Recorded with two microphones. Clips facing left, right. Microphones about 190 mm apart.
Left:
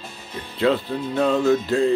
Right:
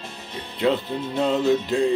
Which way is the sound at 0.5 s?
20° right (ahead or behind).